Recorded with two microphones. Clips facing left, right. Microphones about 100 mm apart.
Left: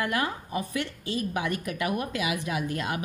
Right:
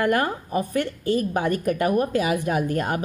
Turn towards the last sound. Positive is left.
turn(degrees=-45)  # may be behind; listen again after turning